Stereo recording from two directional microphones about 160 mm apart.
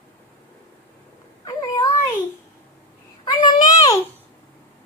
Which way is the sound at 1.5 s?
20° left (ahead or behind).